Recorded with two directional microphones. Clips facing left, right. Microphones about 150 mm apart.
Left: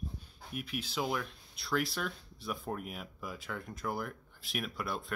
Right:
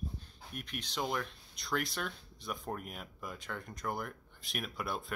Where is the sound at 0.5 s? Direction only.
5° left (ahead or behind).